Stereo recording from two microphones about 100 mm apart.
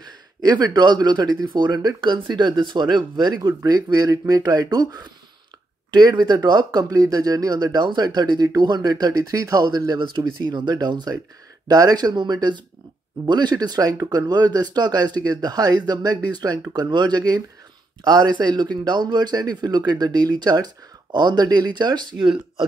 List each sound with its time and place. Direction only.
0.0 s speech: 45° right (ahead or behind)